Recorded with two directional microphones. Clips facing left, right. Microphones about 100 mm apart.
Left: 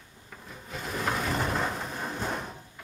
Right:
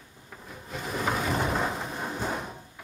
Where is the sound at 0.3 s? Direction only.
5° right (ahead or behind).